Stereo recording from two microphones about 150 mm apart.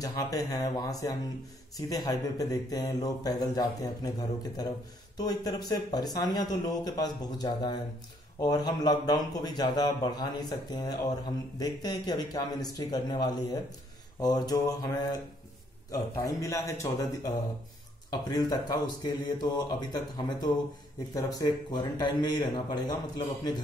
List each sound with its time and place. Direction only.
0.0 s speech: 25° left (ahead or behind)
15.9 s speech: 20° left (ahead or behind)